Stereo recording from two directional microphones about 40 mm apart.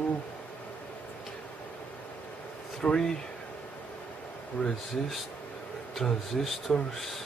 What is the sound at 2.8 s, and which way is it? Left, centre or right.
Speech, left.